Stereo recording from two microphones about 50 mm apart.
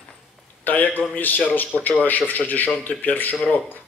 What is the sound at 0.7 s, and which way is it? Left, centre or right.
A man's voice, left.